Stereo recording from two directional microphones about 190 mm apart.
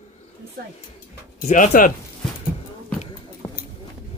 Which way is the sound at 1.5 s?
40° left (ahead or behind).